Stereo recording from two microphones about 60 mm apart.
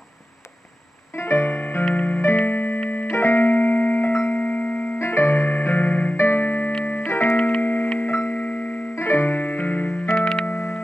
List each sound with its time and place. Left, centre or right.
1.1 s music: left
2.9 s keyboard: left
3.2 s keyboard: left
4.9 s music: left
6.1 s keyboard: left
6.8 s music: left
7.1 s music: left
7.6 s music: left
8.4 s music: left
8.9 s music: left
10.0 s music: centre
10.5 s music: left